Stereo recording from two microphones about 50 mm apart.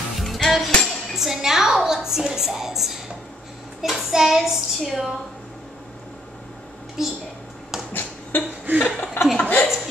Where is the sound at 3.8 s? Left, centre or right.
Centre.